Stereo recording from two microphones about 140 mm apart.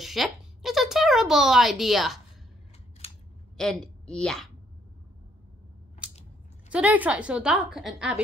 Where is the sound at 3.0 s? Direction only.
45° left (ahead or behind).